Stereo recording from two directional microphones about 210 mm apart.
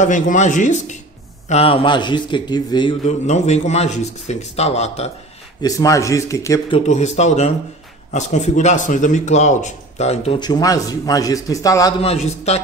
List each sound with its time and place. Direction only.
0.0 s a man's voice: 35° left (ahead or behind)
5.6 s speech: 15° left (ahead or behind)
6.9 s a man's voice: 35° left (ahead or behind); by 11.9 s 15° left (ahead or behind)
12.0 s a man's voice: 30° left (ahead or behind)